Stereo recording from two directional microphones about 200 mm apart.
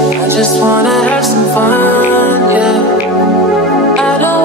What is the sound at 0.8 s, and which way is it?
Speech, centre (ahead or behind).